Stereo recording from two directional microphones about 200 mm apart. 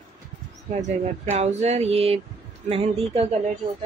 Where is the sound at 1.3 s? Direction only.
30° right (ahead or behind).